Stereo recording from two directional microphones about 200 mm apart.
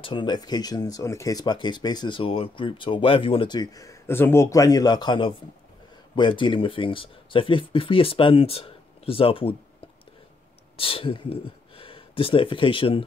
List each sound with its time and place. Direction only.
0.0 s speech: 25° left (ahead or behind)